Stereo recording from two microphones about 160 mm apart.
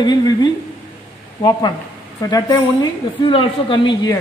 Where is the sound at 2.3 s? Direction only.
25° left (ahead or behind).